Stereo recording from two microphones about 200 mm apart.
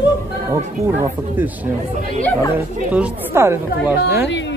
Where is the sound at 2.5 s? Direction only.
10° right (ahead or behind).